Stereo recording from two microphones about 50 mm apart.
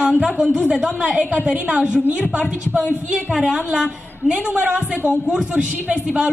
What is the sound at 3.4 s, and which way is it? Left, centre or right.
A woman's voice, centre.